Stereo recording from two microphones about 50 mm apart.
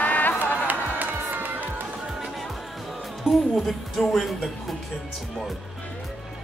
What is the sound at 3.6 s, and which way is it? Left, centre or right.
Speech, centre.